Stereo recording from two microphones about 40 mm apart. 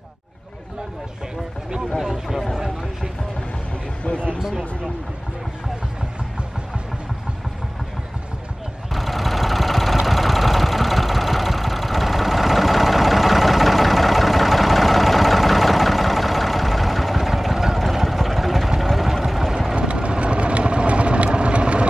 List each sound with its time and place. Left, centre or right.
2.0 s speech: centre
2.5 s speech: centre
4.4 s speech: centre
8.9 s vehicle: centre
19.7 s vehicle: right